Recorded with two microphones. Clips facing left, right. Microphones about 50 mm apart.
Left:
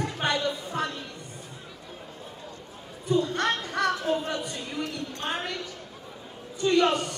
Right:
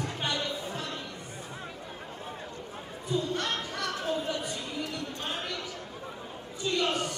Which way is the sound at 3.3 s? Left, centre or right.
Left.